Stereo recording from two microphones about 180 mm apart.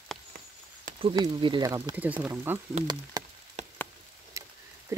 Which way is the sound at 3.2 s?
20° right (ahead or behind).